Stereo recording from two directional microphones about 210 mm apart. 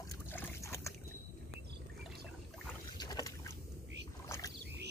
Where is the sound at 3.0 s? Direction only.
20° left (ahead or behind).